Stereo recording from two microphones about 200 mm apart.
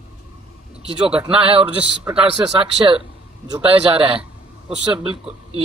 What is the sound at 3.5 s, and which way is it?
A man's voice, 25° right (ahead or behind).